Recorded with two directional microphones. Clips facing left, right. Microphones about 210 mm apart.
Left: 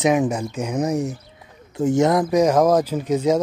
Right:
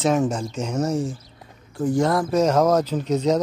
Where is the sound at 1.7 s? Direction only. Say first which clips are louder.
Left 3 dB; 25° left (ahead or behind).